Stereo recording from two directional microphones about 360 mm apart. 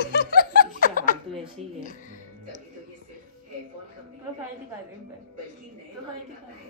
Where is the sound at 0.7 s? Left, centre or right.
Left.